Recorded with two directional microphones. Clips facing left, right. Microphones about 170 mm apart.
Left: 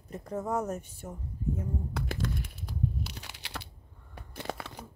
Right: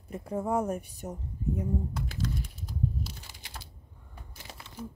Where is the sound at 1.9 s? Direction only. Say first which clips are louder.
Even; 60° left (ahead or behind).